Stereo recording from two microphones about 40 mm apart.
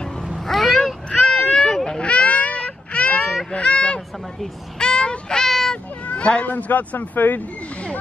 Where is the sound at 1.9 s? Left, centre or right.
Left.